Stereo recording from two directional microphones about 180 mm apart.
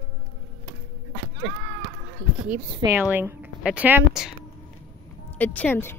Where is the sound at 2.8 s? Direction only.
15° right (ahead or behind).